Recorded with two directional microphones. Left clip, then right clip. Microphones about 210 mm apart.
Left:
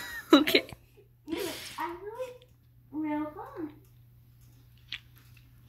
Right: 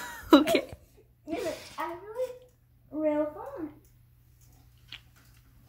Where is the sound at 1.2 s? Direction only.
5° right (ahead or behind).